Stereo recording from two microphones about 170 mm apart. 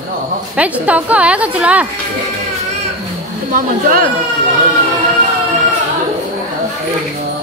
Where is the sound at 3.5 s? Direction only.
55° right (ahead or behind).